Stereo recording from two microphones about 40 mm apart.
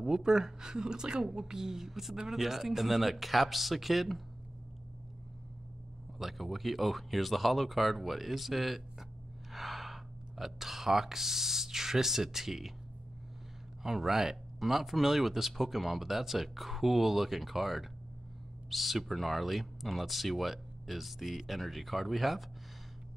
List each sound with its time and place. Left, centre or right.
0.0 s speech: centre
6.1 s speech: centre
13.8 s speech: centre